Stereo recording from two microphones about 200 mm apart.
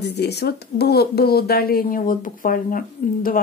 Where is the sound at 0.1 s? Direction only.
55° left (ahead or behind).